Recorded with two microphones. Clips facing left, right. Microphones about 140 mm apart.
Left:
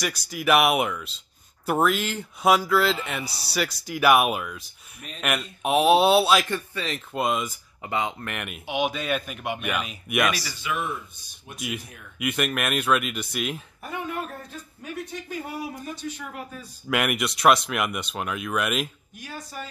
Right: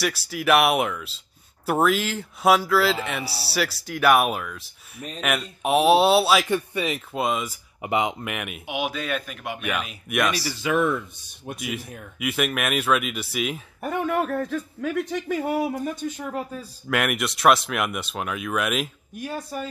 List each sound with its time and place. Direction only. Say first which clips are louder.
0.0 s speech: right 2 dB; 5° right (ahead or behind)
6.5 s speech: right 5 dB; 15° right (ahead or behind)
7.1 s speech: even; centre (ahead or behind)
7.8 s speech: right 4 dB; 20° right (ahead or behind)
8.3 s speech: right 1 dB; 5° right (ahead or behind)
10.6 s speech: right 10 dB; 80° right
11.5 s speech: right 1 dB; centre (ahead or behind)
13.7 s speech: right 11 dB; 55° right (ahead or behind)
15.8 s speech: right 5 dB; 50° right (ahead or behind)
16.9 s speech: right 1 dB; centre (ahead or behind)
19.1 s speech: right 7 dB; 55° right (ahead or behind)